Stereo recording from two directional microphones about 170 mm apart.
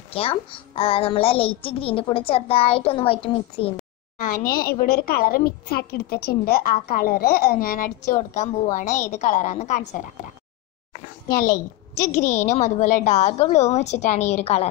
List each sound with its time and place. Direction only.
0.1 s a child's voice: 35° left (ahead or behind)
4.2 s a woman's voice: 55° left (ahead or behind)
12.1 s a child's voice: 45° left (ahead or behind)